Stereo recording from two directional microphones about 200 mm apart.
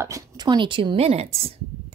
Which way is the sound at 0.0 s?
15° right (ahead or behind).